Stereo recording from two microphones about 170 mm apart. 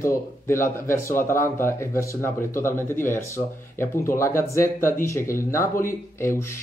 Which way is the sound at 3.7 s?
15° left (ahead or behind).